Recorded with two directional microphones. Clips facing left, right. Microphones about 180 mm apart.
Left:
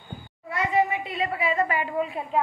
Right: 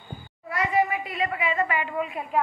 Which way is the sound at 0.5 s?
25° left (ahead or behind).